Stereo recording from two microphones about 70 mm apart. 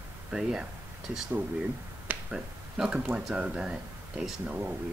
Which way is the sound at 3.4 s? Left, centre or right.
Centre.